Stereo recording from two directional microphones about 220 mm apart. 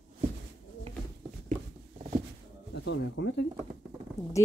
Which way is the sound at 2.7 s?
55° left (ahead or behind).